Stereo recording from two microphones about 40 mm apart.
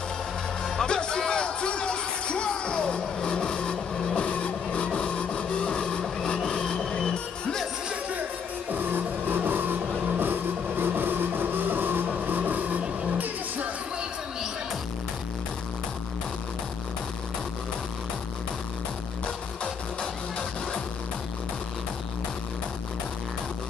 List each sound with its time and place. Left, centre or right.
0.7 s music: centre
6.4 s vehicle: centre
6.9 s music: centre
8.7 s vehicle: right
12.3 s vehicle: right
19.2 s music: left